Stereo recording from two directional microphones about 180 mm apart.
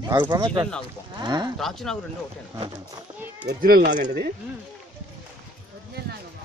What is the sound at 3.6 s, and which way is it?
Speech, 55° right (ahead or behind).